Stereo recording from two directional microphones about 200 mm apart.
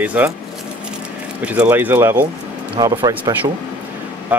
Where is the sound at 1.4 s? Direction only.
5° right (ahead or behind).